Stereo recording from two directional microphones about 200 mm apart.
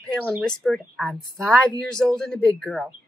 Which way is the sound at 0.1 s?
Centre (ahead or behind).